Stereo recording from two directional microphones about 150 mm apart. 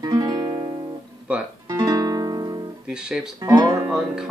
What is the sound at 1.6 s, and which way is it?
Music, 25° right (ahead or behind).